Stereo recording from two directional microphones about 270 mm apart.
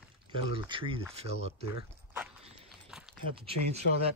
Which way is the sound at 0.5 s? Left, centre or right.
Centre.